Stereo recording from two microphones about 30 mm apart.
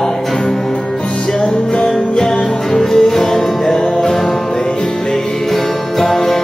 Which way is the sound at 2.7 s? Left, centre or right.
Centre.